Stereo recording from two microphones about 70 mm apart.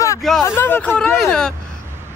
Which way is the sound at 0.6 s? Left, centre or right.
Left.